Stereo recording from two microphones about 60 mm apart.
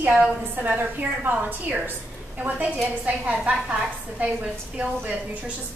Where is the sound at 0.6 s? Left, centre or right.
Right.